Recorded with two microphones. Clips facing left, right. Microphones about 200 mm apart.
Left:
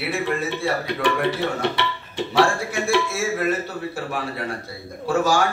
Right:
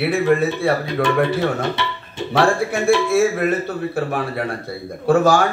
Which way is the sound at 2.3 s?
60° right (ahead or behind).